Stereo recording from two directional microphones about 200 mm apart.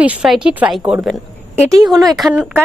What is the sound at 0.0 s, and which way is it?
Speech, 5° right (ahead or behind).